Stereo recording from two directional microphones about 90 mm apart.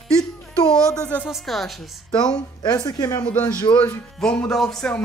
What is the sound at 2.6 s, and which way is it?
Speech, 50° left (ahead or behind).